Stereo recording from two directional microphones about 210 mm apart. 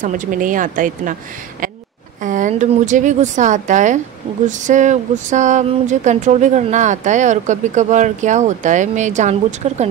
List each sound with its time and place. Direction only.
0.0 s speech: 40° right (ahead or behind)
2.2 s speech: 35° right (ahead or behind)